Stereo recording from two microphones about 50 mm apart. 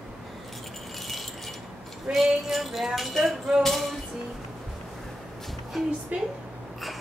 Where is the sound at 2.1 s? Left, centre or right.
Centre.